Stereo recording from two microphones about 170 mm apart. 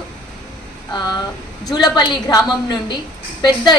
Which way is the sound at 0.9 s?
25° left (ahead or behind).